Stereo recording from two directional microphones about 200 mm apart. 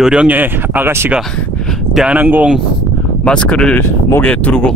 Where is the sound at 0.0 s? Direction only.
5° right (ahead or behind).